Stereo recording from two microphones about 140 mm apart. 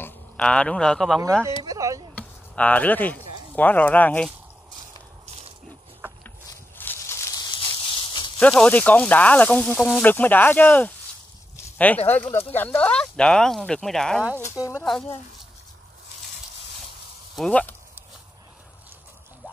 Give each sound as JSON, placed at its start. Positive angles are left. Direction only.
{"t": 0.0, "sound": "speech", "side_deg": 10}
{"t": 1.6, "sound": "speech", "side_deg": -25}
{"t": 2.1, "sound": "a sound", "side_deg": 10}
{"t": 3.5, "sound": "speech", "side_deg": 10}
{"t": 6.8, "sound": "a sound", "side_deg": 15}
{"t": 8.4, "sound": "speech", "side_deg": 10}
{"t": 11.5, "sound": "a sound", "side_deg": 10}
{"t": 12.3, "sound": "speech", "side_deg": 15}
{"t": 17.4, "sound": "speech", "side_deg": 10}